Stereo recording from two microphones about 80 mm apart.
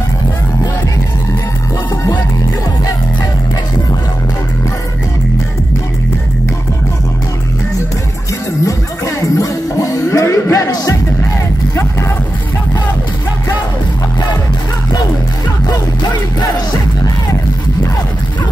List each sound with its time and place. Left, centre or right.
8.6 s music: left
16.3 s music: left